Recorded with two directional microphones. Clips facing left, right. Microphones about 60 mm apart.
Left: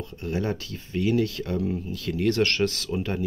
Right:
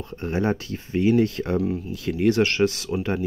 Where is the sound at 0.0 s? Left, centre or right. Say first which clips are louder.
Right 4 dB; right.